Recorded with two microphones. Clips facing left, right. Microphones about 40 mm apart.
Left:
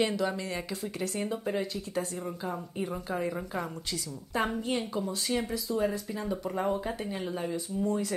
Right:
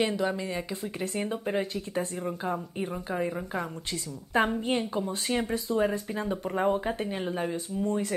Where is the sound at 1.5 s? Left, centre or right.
Right.